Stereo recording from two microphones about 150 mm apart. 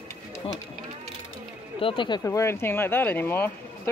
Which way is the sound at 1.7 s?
35° left (ahead or behind).